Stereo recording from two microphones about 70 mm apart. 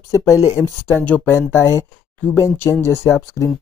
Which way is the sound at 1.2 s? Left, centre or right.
Left.